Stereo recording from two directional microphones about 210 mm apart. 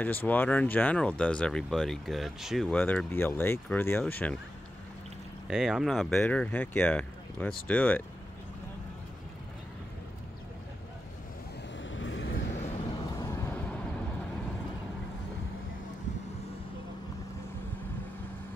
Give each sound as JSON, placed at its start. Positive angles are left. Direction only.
{"t": 0.0, "sound": "speech", "side_deg": 10}
{"t": 5.5, "sound": "speech", "side_deg": -5}
{"t": 11.8, "sound": "vehicle", "side_deg": 65}
{"t": 12.9, "sound": "vehicle", "side_deg": 15}